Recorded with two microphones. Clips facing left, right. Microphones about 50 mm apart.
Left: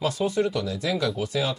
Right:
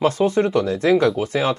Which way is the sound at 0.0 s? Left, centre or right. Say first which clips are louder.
Right 6 dB; right.